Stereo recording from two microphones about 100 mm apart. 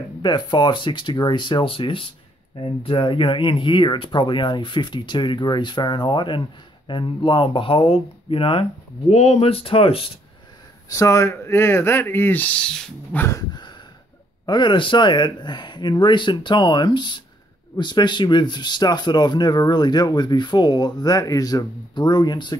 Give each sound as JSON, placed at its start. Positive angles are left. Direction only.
{"t": 0.2, "sound": "speech", "side_deg": 50}
{"t": 9.1, "sound": "speech", "side_deg": 90}
{"t": 10.9, "sound": "speech", "side_deg": 30}
{"t": 13.1, "sound": "a sound", "side_deg": 15}
{"t": 13.5, "sound": "a sound", "side_deg": 50}
{"t": 14.4, "sound": "speech", "side_deg": 50}